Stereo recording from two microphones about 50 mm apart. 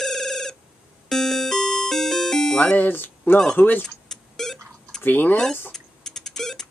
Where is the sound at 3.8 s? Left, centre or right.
Centre.